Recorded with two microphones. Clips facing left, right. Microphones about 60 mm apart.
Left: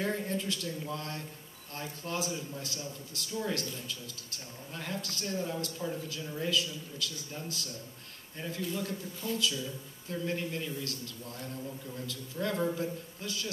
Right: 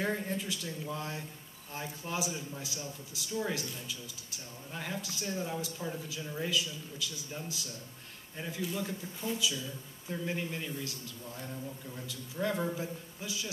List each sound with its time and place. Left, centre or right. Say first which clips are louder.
0.0 s speech: left 1 dB; centre